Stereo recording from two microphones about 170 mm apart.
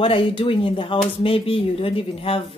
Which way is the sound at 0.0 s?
30° left (ahead or behind).